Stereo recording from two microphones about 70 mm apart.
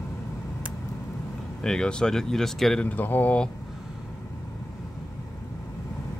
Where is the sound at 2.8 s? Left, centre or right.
Left.